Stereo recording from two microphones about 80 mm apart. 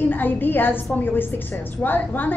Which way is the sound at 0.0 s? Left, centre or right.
Left.